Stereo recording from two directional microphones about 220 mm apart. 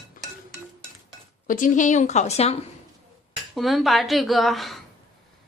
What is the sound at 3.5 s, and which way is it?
Speech, centre (ahead or behind).